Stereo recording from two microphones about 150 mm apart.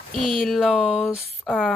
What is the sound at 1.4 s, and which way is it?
Speech, 10° left (ahead or behind).